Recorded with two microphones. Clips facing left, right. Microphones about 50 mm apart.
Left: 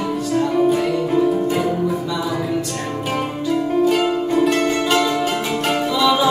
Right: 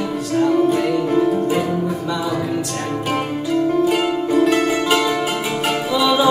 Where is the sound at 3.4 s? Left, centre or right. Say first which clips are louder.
Even; centre.